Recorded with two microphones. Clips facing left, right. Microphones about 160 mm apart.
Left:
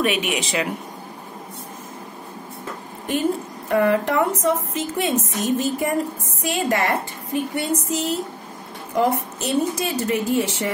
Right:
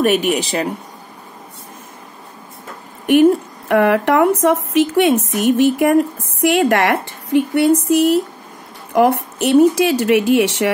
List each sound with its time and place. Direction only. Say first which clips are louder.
0.3 s speech: right 5 dB; 35° right (ahead or behind)
3.1 s a woman's voice: right 11 dB; 70° right (ahead or behind)